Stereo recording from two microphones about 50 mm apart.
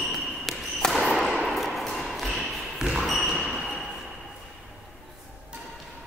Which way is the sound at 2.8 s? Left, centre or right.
Centre.